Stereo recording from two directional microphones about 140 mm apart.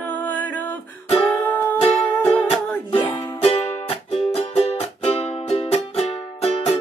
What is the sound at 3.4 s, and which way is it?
Music, 45° left (ahead or behind).